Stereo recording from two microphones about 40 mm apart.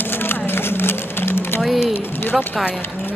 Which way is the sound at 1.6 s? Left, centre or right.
Centre.